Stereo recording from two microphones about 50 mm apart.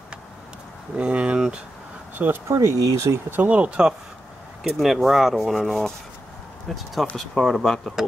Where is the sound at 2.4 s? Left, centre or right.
Right.